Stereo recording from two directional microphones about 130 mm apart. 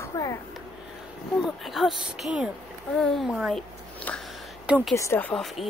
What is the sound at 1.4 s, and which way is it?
Speech, centre (ahead or behind).